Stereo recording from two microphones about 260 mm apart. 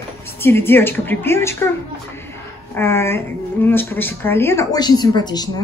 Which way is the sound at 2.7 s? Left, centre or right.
Centre.